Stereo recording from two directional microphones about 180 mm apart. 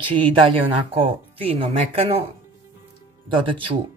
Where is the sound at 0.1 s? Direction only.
30° right (ahead or behind).